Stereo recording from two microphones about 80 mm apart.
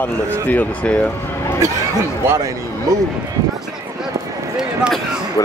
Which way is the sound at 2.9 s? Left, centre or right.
Right.